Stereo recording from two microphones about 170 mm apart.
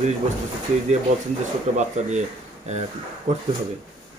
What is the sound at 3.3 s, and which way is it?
Speech, 40° right (ahead or behind).